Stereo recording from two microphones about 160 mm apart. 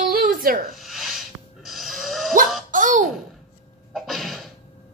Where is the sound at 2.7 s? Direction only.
55° right (ahead or behind).